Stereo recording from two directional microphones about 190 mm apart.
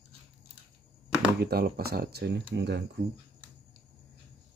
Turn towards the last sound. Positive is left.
turn(degrees=-65)  # may be behind; listen again after turning